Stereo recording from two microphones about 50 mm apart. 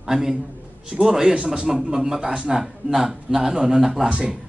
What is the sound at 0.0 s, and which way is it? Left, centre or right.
A man's voice, centre.